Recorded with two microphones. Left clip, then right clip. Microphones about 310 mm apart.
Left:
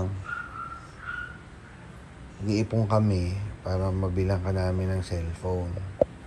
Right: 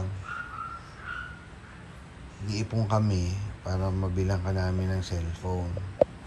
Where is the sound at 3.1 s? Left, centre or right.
Right.